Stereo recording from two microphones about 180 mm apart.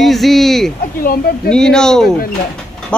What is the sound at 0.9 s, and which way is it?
Speech, 55° left (ahead or behind).